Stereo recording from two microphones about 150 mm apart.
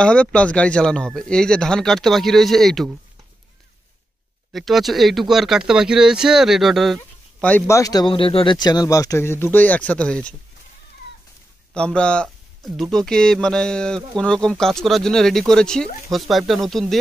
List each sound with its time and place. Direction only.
0.0 s speech: 5° left (ahead or behind)
4.5 s speech: centre (ahead or behind)
7.4 s speech: 15° left (ahead or behind)
8.1 s speech: 35° left (ahead or behind); by 10.3 s 5° left (ahead or behind)
11.7 s speech: 5° left (ahead or behind)